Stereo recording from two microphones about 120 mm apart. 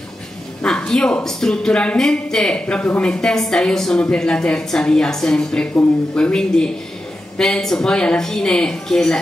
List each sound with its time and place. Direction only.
0.6 s a woman's voice: 5° left (ahead or behind)